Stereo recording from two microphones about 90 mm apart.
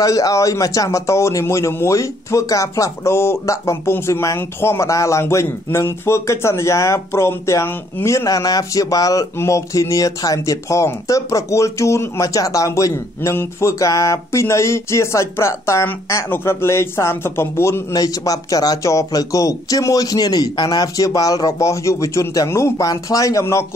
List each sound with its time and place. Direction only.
0.0 s a man's voice: 40° left (ahead or behind)
17.9 s a man's voice: 45° left (ahead or behind)